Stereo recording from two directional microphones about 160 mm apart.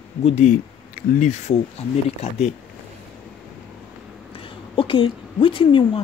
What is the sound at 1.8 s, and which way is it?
Speech, 35° left (ahead or behind).